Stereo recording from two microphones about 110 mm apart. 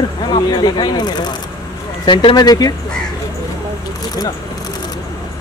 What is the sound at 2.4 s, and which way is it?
Speech, 35° left (ahead or behind).